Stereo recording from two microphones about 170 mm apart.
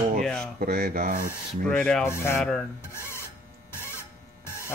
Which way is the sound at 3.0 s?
15° left (ahead or behind).